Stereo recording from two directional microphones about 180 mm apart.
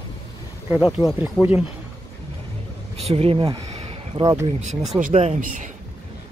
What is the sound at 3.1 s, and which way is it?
Speech, 30° right (ahead or behind).